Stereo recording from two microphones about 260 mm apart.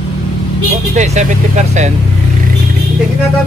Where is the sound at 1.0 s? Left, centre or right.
Right.